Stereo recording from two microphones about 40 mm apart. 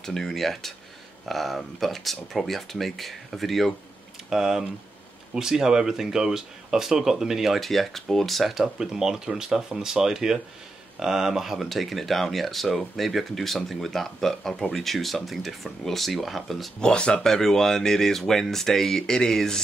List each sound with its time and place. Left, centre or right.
0.0 s speech: centre
4.3 s speech: centre
7.6 s speech: centre
8.7 s speech: centre
16.8 s speech: left
17.3 s speech: centre